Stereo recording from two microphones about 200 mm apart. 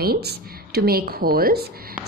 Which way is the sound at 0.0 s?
50° right (ahead or behind).